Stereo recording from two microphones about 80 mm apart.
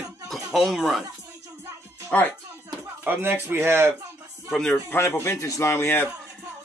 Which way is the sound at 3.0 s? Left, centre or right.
Right.